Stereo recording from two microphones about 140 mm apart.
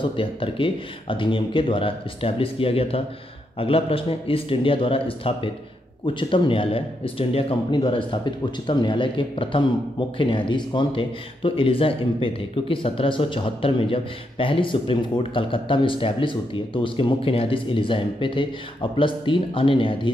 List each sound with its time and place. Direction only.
0.0 s speech: 40° left (ahead or behind)